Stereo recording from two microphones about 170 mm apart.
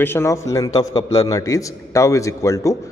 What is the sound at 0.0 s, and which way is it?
Speech, 15° left (ahead or behind).